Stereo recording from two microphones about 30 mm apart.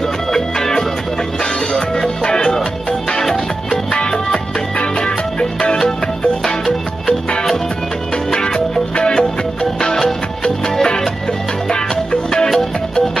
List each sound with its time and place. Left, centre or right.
0.3 s music: centre; by 5.8 s left
6.4 s music: centre
8.3 s music: left